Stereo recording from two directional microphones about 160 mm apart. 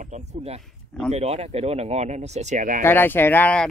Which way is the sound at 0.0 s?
45° right (ahead or behind).